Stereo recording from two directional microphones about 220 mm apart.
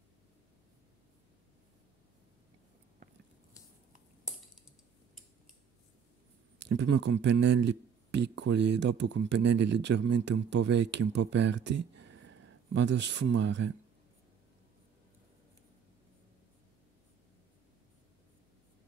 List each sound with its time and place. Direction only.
6.6 s a man's voice: 55° right (ahead or behind)